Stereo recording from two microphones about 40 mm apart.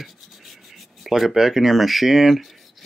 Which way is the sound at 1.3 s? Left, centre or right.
Centre.